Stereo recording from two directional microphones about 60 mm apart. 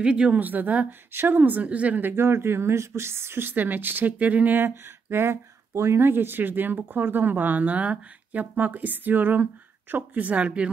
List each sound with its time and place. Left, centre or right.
0.0 s a woman's voice: centre
0.4 s a woman's voice: right
2.0 s speech: right
4.6 s speech: right; by 10.7 s centre